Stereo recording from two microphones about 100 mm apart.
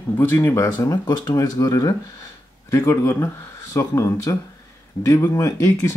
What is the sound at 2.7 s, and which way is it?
Speech, 25° left (ahead or behind).